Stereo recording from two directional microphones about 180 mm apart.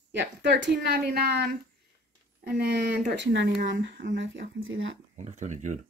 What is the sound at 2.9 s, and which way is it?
Speech, 75° right (ahead or behind).